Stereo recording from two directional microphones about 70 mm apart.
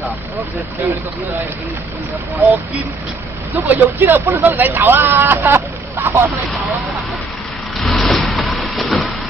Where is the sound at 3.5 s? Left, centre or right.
Right.